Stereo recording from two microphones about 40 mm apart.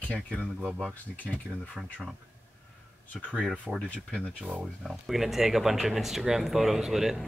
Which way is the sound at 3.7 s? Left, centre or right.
Left.